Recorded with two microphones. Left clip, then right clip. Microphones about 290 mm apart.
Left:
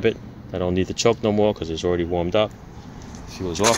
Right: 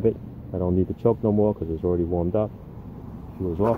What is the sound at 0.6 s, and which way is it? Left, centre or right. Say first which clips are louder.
Speech: left 2 dB; left.